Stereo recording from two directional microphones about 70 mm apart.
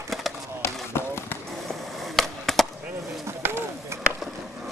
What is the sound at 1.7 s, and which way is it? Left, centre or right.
Skateboard, centre.